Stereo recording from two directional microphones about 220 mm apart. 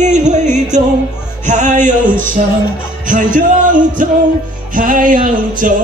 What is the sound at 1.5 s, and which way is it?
Speech, 35° right (ahead or behind).